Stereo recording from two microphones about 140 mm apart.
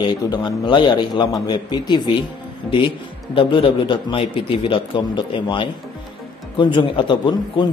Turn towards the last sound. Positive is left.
turn(degrees=35)  # may be behind; listen again after turning